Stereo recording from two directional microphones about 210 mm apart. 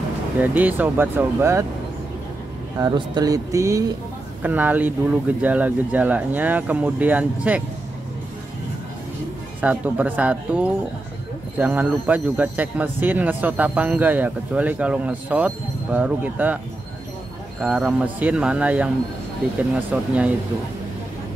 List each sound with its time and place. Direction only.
0.4 s speech: 10° right (ahead or behind)
2.8 s speech: 20° right (ahead or behind)
9.6 s speech: 10° right (ahead or behind)
17.6 s speech: 5° right (ahead or behind)
19.9 s speech: 5° right (ahead or behind)